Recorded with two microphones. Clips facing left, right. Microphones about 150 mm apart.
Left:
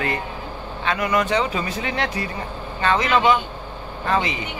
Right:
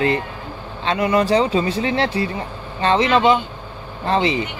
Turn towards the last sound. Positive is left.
turn(degrees=-30)  # may be behind; listen again after turning